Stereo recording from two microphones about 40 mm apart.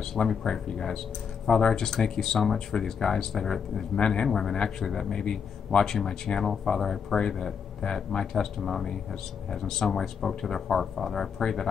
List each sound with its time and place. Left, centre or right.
0.0 s speech: centre
3.9 s speech: left
8.5 s speech: centre